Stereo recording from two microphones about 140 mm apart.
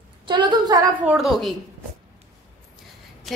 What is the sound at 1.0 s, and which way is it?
Speech, centre (ahead or behind).